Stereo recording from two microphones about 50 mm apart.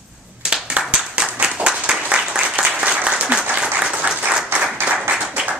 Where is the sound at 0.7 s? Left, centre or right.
Right.